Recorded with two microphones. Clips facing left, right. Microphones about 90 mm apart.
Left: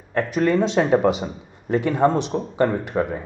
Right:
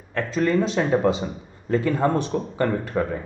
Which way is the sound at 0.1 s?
20° left (ahead or behind).